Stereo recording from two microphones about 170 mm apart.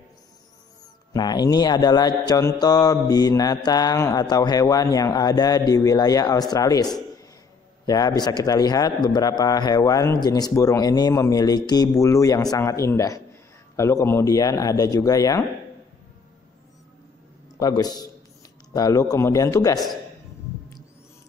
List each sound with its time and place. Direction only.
1.1 s a man's voice: 25° left (ahead or behind)
17.6 s a man's voice: 20° left (ahead or behind)